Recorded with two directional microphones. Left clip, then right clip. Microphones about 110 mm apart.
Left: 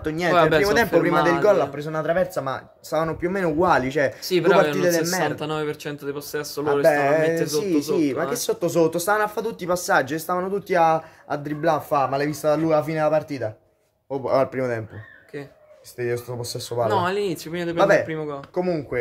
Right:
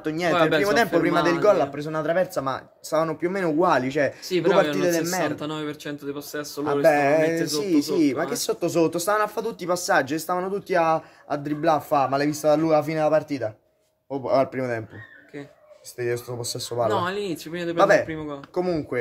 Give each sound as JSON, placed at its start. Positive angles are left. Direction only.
{"t": 0.0, "sound": "speech", "side_deg": -10}
{"t": 0.3, "sound": "speech", "side_deg": 40}
{"t": 1.0, "sound": "speech", "side_deg": -20}
{"t": 4.3, "sound": "speech", "side_deg": 45}
{"t": 5.4, "sound": "speech", "side_deg": 35}
{"t": 6.6, "sound": "speech", "side_deg": -20}
{"t": 14.1, "sound": "a man's voice", "side_deg": -5}
{"t": 16.0, "sound": "speech", "side_deg": -30}
{"t": 16.9, "sound": "speech", "side_deg": 35}
{"t": 17.7, "sound": "speech", "side_deg": -25}
{"t": 18.0, "sound": "speech", "side_deg": 30}
{"t": 18.5, "sound": "speech", "side_deg": -40}